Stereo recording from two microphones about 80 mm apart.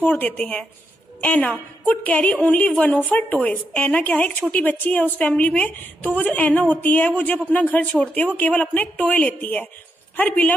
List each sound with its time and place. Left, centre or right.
0.0 s a woman's voice: centre